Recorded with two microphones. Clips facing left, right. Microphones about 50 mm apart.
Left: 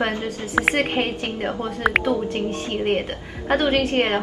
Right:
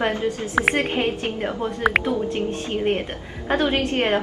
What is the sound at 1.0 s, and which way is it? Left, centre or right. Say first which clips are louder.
Speech: even; centre.